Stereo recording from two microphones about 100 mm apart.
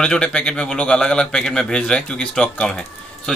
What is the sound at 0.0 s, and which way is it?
A man's voice, 5° left (ahead or behind).